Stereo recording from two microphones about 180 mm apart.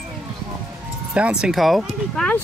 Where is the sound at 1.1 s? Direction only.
5° right (ahead or behind).